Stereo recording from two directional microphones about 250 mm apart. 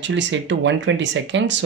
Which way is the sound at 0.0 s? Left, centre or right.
Right.